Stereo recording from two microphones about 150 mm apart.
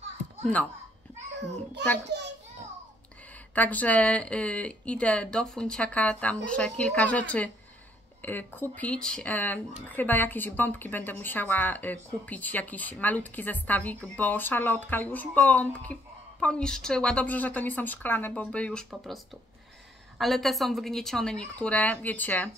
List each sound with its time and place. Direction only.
2.1 s a child's voice: 90° right
3.5 s a woman's voice: 10° left (ahead or behind)
20.2 s a woman's voice: centre (ahead or behind)